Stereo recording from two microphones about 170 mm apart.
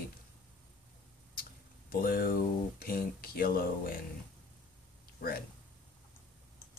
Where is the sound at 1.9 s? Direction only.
60° left (ahead or behind).